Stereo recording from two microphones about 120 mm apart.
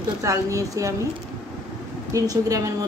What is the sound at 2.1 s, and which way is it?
Speech, 30° right (ahead or behind).